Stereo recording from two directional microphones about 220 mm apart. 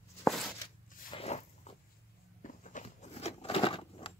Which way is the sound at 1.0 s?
25° left (ahead or behind).